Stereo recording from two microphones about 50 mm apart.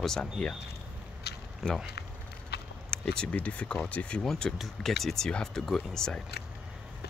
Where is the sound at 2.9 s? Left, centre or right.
Centre.